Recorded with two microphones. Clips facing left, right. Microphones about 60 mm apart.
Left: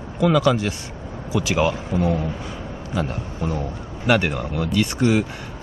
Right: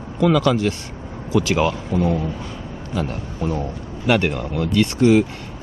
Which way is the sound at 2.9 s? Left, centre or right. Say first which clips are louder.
Right 1 dB; left.